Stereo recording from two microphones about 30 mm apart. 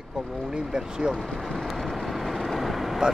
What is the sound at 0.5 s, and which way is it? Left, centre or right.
Speech, right.